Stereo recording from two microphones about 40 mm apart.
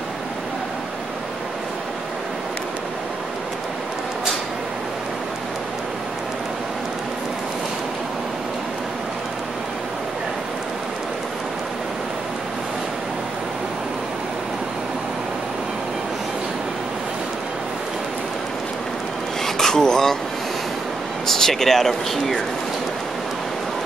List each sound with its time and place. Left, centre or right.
19.4 s vehicle: centre
21.3 s speech: centre